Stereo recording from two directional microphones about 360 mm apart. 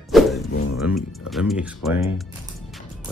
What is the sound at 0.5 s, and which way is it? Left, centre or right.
Speech, left.